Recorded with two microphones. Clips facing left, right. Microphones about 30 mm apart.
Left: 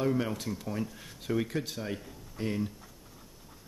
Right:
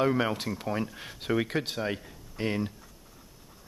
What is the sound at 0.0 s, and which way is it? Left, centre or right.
Speech, right.